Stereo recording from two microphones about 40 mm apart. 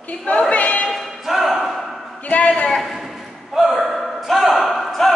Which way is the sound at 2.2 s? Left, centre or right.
Left.